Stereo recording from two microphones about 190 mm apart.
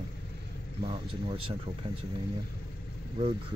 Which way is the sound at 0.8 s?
30° right (ahead or behind).